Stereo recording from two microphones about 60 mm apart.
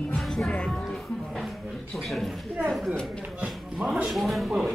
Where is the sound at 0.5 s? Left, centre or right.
Centre.